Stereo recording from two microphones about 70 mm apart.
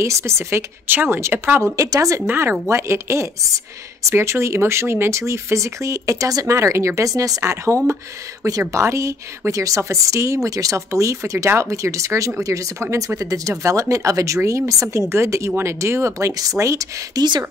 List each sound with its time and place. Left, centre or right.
0.0 s speech: right
0.8 s speech: right
1.8 s speech: right
2.2 s speech: right
2.7 s speech: right
5.2 s speech: right
17.1 s speech: right